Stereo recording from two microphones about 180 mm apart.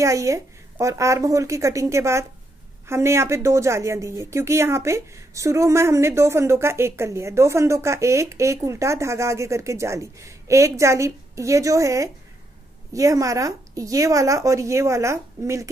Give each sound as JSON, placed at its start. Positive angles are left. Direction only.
{"t": 0.0, "sound": "a woman's voice", "side_deg": -15}